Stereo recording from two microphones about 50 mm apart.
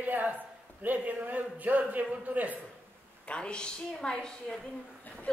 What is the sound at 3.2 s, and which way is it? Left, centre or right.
A woman's voice, left.